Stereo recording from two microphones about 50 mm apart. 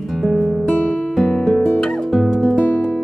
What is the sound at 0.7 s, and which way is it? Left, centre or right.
Guitar, left.